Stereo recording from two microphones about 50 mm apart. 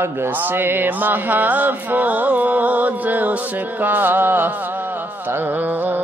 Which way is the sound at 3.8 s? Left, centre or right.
Right.